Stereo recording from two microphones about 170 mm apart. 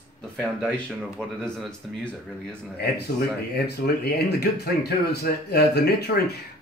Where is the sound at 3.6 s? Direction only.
70° left (ahead or behind).